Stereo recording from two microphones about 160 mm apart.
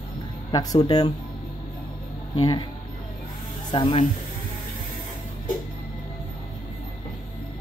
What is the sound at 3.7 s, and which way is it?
Speech, 35° left (ahead or behind).